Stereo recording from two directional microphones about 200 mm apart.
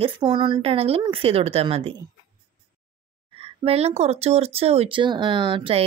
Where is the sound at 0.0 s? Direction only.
25° right (ahead or behind).